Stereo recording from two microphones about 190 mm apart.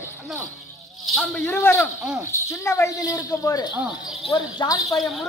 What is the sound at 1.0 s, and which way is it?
Speech, centre (ahead or behind).